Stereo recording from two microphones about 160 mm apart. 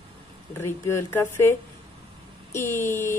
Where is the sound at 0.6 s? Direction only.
15° left (ahead or behind).